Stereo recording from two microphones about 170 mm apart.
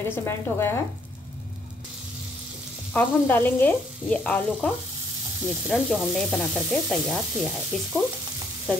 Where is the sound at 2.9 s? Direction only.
10° left (ahead or behind).